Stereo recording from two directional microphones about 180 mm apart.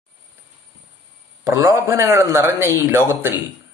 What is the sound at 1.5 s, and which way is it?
A man's voice, 15° right (ahead or behind).